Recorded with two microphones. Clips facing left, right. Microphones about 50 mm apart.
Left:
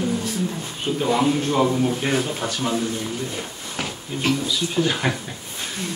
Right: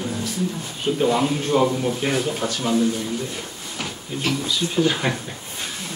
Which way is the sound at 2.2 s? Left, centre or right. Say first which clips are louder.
Right 1 dB; centre.